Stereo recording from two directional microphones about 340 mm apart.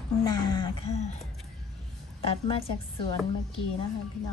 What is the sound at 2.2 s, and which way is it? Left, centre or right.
Speech, centre.